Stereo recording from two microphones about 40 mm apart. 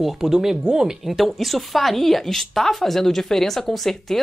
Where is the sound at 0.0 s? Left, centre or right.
Centre.